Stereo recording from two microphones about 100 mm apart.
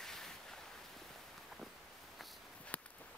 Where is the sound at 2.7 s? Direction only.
15° left (ahead or behind).